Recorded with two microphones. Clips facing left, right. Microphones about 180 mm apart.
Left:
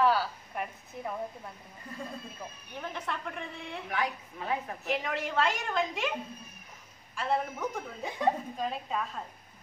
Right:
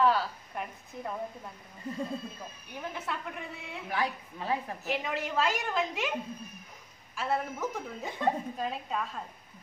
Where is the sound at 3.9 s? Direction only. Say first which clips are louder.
Right 1 dB; 30° right (ahead or behind).